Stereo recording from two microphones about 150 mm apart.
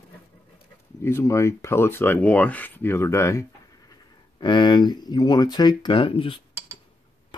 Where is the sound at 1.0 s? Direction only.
20° left (ahead or behind).